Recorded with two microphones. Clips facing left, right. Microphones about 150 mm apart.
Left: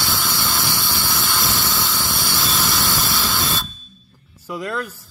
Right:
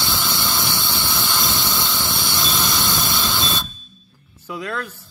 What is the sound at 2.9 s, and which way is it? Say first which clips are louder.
Steam: even; 20° right (ahead or behind).